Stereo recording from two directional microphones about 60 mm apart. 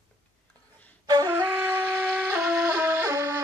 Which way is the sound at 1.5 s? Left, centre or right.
Right.